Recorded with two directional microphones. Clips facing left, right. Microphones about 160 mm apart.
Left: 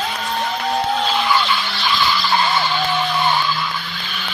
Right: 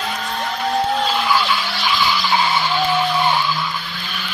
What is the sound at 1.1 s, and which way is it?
Skidding, 5° right (ahead or behind).